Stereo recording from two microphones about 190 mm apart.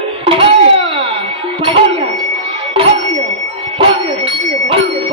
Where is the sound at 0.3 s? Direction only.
30° right (ahead or behind).